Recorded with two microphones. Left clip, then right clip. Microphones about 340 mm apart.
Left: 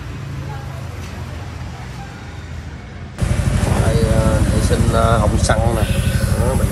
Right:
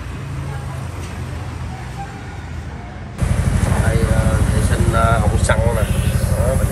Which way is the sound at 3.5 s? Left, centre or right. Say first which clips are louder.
Left 2 dB; centre.